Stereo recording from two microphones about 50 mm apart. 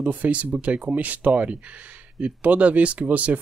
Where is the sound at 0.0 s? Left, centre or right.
Right.